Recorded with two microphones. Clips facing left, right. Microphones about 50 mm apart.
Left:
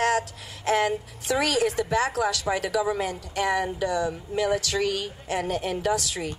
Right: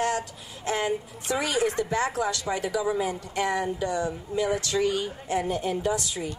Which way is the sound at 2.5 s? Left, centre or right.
Left.